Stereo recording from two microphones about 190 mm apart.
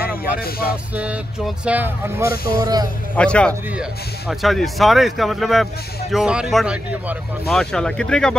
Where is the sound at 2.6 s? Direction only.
20° right (ahead or behind).